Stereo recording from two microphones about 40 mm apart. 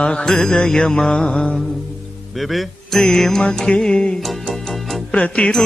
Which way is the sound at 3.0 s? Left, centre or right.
Centre.